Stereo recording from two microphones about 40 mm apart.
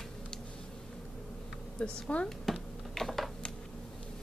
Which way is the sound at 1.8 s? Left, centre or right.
Left.